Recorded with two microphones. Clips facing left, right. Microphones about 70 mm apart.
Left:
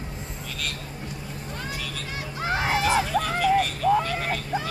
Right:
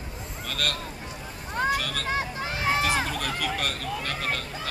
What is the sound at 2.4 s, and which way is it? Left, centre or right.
Hubbub, left.